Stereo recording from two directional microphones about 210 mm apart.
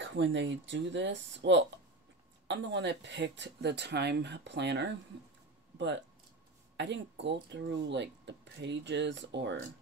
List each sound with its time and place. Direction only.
0.0 s speech: 60° right (ahead or behind)
6.8 s speech: 60° right (ahead or behind)